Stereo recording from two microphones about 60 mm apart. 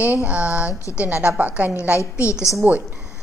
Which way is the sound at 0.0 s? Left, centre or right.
Right.